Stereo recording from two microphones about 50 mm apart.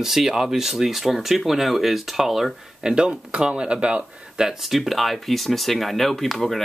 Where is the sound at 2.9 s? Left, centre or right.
Centre.